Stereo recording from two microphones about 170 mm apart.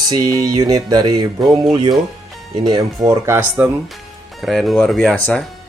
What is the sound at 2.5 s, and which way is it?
Speech, 25° right (ahead or behind).